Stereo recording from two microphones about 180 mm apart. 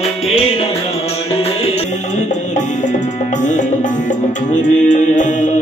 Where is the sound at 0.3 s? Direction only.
35° left (ahead or behind).